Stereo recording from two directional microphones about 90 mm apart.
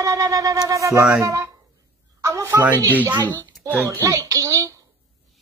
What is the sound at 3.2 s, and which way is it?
Speech, 55° right (ahead or behind).